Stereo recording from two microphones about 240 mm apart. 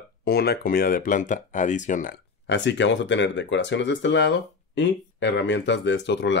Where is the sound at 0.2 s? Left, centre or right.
Left.